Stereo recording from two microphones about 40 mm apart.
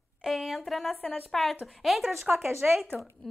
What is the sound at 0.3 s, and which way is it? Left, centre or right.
Speech, centre.